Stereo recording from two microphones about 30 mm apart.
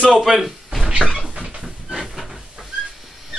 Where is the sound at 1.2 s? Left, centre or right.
Right.